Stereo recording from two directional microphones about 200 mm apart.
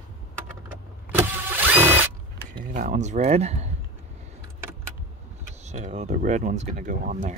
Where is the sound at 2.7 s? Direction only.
35° right (ahead or behind).